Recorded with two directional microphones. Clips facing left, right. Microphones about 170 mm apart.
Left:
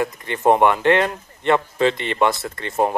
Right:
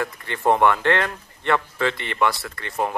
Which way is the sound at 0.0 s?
20° left (ahead or behind).